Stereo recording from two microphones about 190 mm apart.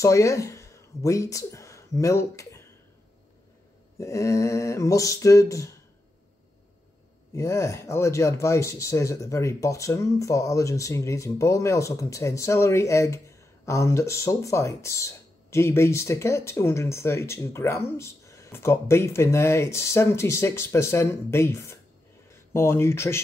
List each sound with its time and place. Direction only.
0.0 s speech: 15° left (ahead or behind)
4.0 s speech: 15° left (ahead or behind)
7.3 s speech: 15° left (ahead or behind)